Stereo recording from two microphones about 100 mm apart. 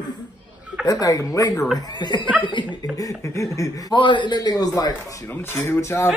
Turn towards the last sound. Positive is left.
turn(degrees=25)  # may be behind; listen again after turning